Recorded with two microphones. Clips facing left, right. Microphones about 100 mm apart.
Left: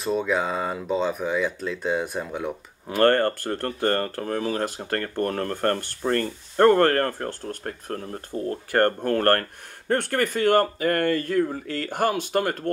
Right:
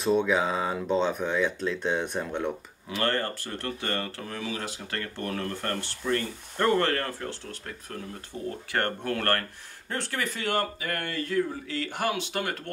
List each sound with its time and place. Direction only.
0.0 s speech: centre (ahead or behind)
2.9 s speech: 50° left (ahead or behind)